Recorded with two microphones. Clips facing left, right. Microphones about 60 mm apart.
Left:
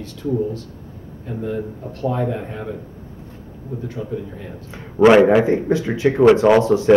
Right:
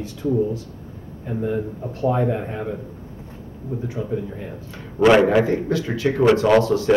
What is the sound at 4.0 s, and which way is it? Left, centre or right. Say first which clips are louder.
Speech: right 1 dB; centre.